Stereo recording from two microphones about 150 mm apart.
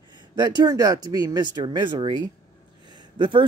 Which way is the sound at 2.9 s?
30° right (ahead or behind).